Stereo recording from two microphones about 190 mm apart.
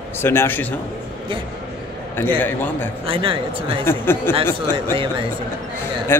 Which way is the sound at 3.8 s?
10° left (ahead or behind).